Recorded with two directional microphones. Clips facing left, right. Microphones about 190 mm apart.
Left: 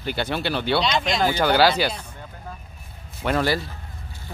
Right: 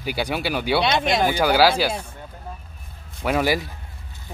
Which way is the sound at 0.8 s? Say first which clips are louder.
Right 3 dB; 55° right (ahead or behind).